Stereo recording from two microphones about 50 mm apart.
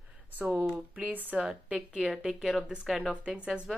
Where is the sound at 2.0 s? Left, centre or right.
Centre.